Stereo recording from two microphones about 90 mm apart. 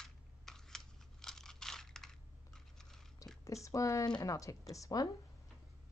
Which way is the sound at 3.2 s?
40° left (ahead or behind).